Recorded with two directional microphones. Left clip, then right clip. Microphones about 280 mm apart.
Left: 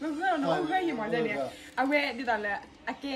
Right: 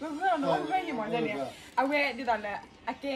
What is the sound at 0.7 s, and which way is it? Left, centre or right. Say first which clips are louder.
A woman's voice: left 1 dB; centre.